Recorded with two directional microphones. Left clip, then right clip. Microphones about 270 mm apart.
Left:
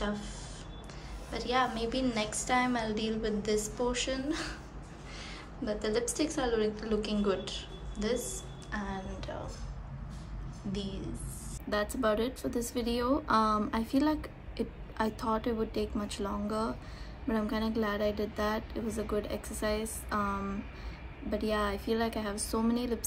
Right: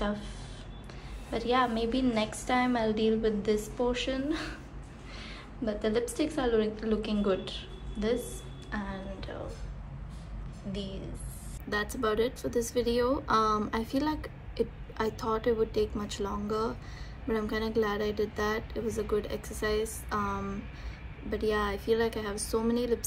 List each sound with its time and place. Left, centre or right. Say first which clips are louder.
0.0 s speech: right 2 dB; centre
1.3 s a woman's voice: right 3 dB; centre
5.7 s a woman's voice: right 2 dB; centre
10.7 s a woman's voice: even; centre